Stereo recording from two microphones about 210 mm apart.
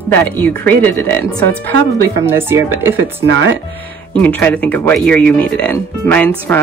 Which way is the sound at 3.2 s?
60° right (ahead or behind).